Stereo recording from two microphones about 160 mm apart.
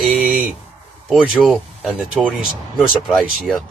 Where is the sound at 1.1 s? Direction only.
Centre (ahead or behind).